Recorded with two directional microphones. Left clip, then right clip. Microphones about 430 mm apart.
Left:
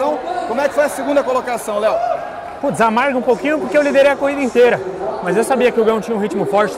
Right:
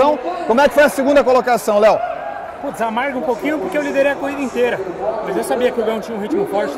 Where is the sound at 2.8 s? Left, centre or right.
Left.